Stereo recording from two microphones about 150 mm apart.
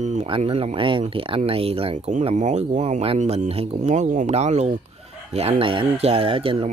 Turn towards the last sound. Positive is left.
turn(degrees=-40)  # may be behind; listen again after turning